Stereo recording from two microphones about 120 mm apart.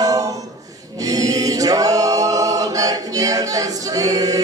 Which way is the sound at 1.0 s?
30° right (ahead or behind).